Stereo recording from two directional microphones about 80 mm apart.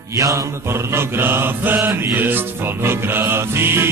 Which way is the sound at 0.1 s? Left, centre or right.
Right.